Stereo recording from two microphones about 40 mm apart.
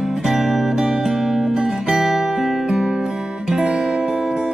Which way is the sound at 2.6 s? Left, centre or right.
Centre.